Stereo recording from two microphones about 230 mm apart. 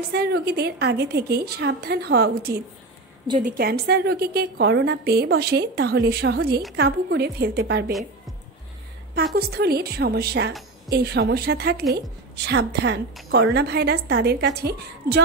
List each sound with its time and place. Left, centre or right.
0.1 s a woman's voice: right
3.3 s a woman's voice: right
9.1 s a woman's voice: right